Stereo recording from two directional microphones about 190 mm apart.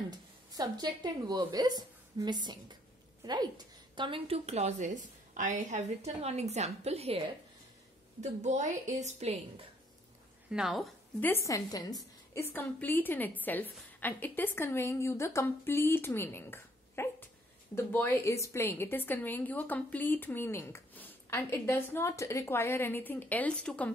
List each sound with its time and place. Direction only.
0.5 s a woman's voice: 20° right (ahead or behind)
8.2 s a woman's voice: 40° right (ahead or behind)
10.5 s a woman's voice: centre (ahead or behind)